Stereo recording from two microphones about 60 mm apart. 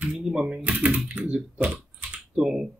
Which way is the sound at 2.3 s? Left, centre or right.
Centre.